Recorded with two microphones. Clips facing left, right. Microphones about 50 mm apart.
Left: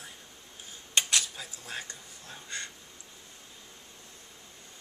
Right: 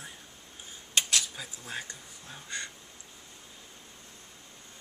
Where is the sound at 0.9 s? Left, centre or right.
Centre.